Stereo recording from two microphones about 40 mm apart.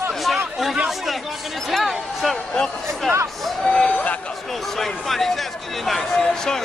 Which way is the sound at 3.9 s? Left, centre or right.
Left.